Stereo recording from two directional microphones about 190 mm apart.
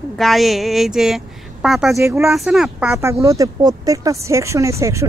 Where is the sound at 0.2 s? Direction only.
Centre (ahead or behind).